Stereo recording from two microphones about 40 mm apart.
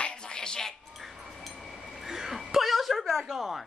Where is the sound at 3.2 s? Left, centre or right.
Centre.